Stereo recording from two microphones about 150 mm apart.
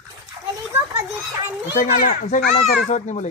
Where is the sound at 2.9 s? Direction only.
50° left (ahead or behind).